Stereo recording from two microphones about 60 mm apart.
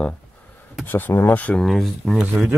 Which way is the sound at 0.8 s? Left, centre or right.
Left.